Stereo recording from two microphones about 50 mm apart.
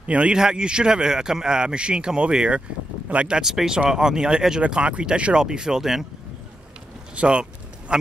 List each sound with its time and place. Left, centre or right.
0.0 s speech: right; by 6.0 s centre
7.2 s speech: right